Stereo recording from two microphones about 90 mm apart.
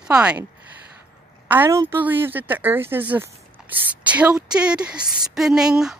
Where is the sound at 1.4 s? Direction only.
20° right (ahead or behind).